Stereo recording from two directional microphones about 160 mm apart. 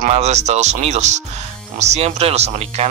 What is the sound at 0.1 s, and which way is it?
Speech, 45° right (ahead or behind).